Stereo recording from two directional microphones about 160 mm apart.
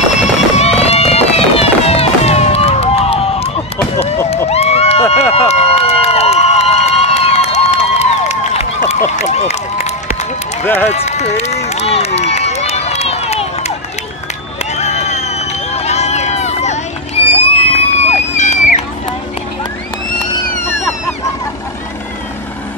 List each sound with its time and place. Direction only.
0.2 s run: 40° left (ahead or behind)
10.6 s speech: 15° left (ahead or behind)
10.9 s run: 45° left (ahead or behind)
14.8 s run: 45° left (ahead or behind)